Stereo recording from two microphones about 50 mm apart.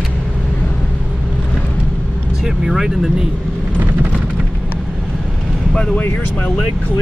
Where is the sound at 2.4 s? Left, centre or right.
Centre.